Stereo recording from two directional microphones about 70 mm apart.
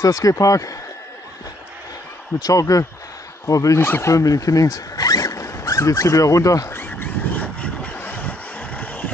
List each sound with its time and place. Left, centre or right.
0.0 s speech: left
2.4 s speech: left
3.8 s speech: left
4.1 s speech: left
6.7 s a sound: left
7.6 s vehicle: left